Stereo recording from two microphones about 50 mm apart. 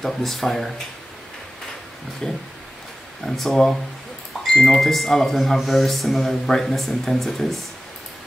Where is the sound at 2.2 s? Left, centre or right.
Centre.